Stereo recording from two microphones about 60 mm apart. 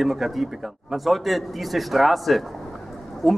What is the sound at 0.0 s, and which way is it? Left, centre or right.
A man's voice, centre.